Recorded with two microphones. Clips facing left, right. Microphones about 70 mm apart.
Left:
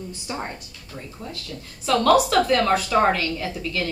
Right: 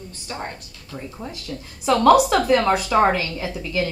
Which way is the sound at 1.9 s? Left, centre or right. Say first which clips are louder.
Right 3 dB; centre.